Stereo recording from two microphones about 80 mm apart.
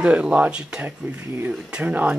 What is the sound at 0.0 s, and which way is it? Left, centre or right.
Speech, centre.